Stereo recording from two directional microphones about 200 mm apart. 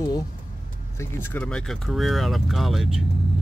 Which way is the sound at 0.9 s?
10° left (ahead or behind).